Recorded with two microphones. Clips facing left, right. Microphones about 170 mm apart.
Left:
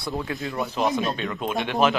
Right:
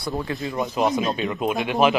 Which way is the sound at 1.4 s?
Centre (ahead or behind).